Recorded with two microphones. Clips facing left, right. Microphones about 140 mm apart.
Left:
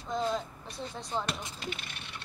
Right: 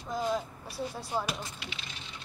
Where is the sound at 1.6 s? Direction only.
55° left (ahead or behind).